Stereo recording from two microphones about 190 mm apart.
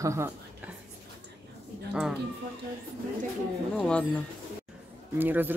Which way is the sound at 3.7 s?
5° left (ahead or behind).